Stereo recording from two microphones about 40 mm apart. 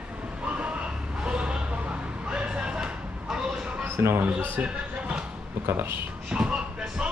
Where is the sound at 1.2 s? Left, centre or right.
Right.